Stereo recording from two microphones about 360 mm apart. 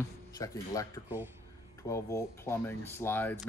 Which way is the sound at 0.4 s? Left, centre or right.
Centre.